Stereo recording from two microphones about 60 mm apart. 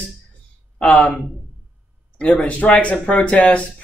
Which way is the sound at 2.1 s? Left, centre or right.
Left.